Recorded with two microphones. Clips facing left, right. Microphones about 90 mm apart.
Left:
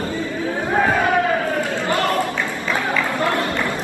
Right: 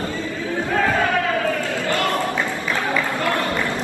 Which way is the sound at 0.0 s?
25° left (ahead or behind).